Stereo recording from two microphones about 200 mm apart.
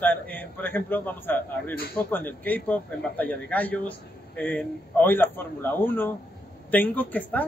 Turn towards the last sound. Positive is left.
turn(degrees=10)  # may be behind; listen again after turning